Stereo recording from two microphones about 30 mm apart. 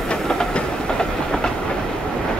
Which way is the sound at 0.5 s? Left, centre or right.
Left.